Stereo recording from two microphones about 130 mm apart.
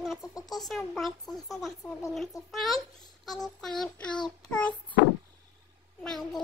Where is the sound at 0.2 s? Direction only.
25° left (ahead or behind).